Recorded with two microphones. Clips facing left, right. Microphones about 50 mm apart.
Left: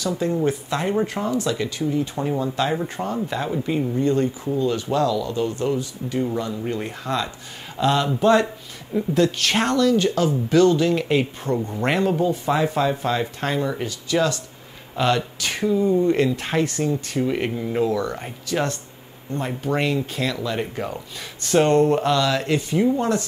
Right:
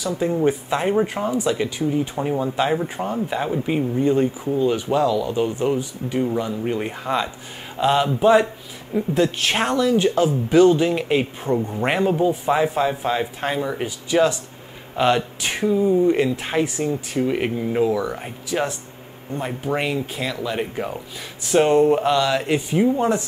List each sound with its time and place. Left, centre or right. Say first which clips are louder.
0.2 s speech: right 5 dB; centre
15.8 s speech: right 1 dB; centre